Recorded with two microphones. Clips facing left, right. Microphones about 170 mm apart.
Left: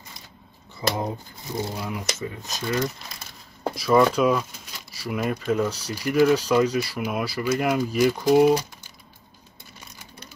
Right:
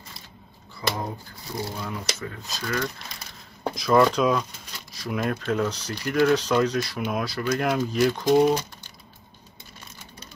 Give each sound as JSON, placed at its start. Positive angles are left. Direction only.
{"t": 0.8, "sound": "speech", "side_deg": 20}
{"t": 3.6, "sound": "speech", "side_deg": 5}